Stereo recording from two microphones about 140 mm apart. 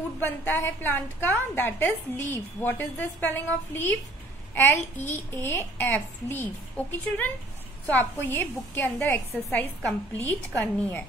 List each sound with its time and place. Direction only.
0.2 s a woman's voice: 15° left (ahead or behind)
7.8 s a woman's voice: 15° left (ahead or behind)